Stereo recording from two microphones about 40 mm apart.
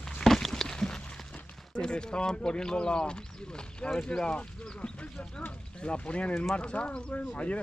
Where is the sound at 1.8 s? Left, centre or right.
Centre.